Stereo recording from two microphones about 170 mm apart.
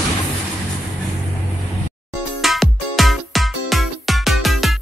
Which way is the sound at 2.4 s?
Centre (ahead or behind).